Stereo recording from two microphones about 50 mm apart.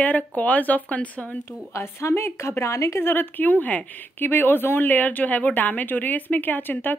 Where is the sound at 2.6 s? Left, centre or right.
Left.